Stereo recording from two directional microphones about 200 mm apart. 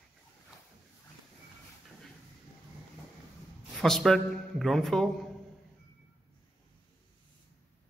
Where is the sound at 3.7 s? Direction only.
Centre (ahead or behind).